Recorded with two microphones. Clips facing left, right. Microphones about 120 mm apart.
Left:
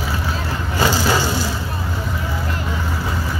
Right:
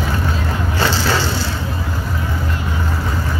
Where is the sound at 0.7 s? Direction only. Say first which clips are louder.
Left 2 dB; 15° left (ahead or behind).